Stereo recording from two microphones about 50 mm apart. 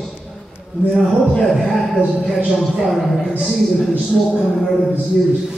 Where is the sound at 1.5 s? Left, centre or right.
Centre.